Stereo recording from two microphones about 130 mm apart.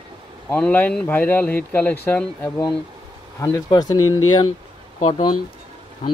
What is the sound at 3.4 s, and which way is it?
Speech, 30° left (ahead or behind).